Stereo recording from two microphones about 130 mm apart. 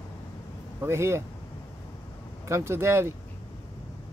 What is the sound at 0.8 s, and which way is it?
Speech, 20° right (ahead or behind).